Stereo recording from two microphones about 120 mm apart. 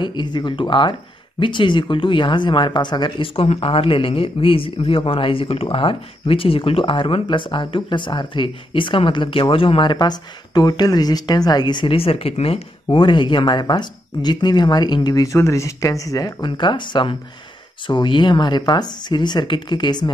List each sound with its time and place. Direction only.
0.0 s speech: 40° left (ahead or behind)
16.4 s speech: 40° left (ahead or behind)